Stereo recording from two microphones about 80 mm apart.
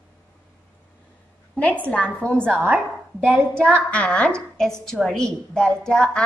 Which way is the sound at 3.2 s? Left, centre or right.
Right.